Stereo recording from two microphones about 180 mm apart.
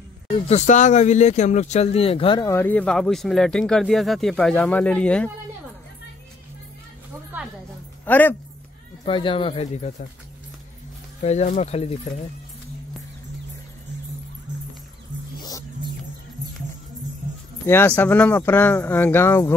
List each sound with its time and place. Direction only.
0.3 s speech: 40° left (ahead or behind)
2.4 s speech: 10° left (ahead or behind)
8.0 s a man's voice: 10° left (ahead or behind)
9.0 s speech: 30° left (ahead or behind)
11.2 s speech: 40° left (ahead or behind)
17.6 s speech: 10° left (ahead or behind)